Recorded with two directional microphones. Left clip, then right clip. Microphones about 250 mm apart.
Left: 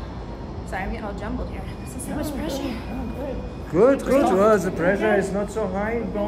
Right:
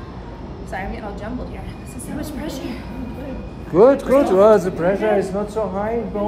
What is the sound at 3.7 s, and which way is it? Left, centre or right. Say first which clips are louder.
A man's voice: right 5 dB; centre.